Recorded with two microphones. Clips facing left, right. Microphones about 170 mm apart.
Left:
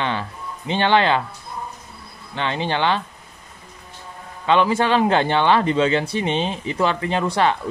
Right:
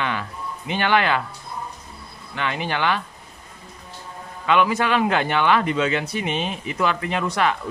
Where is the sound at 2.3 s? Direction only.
25° left (ahead or behind).